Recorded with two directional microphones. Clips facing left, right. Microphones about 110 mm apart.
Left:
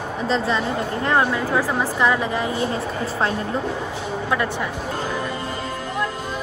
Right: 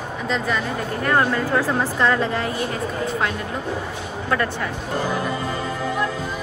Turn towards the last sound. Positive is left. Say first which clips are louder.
# even
turn(degrees=15)  # may be behind; listen again after turning